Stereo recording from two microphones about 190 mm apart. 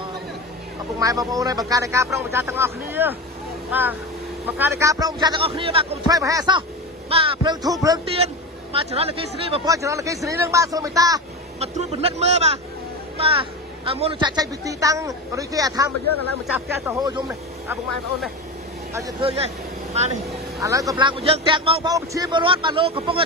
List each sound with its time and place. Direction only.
0.9 s speech: 20° right (ahead or behind)
4.5 s a woman's voice: 10° right (ahead or behind)
8.7 s speech: 30° right (ahead or behind)
9.7 s speech: 15° right (ahead or behind)
11.6 s a woman's voice: 35° right (ahead or behind); by 17.7 s 15° right (ahead or behind)
18.9 s speech: 20° right (ahead or behind)
20.6 s speech: 15° right (ahead or behind)
21.0 s a woman's voice: 30° right (ahead or behind)